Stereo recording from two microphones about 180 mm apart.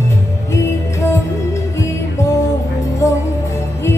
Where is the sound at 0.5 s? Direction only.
15° left (ahead or behind).